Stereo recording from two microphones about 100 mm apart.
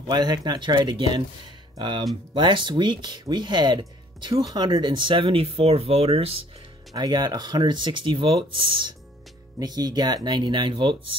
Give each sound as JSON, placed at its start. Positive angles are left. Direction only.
{"t": 0.1, "sound": "speech", "side_deg": -40}
{"t": 6.9, "sound": "speech", "side_deg": -45}
{"t": 9.6, "sound": "speech", "side_deg": -40}